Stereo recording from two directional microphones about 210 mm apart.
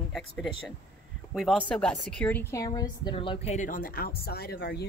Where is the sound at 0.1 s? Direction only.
Centre (ahead or behind).